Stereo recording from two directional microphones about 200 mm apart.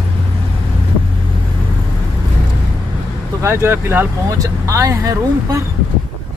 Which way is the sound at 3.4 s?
15° right (ahead or behind).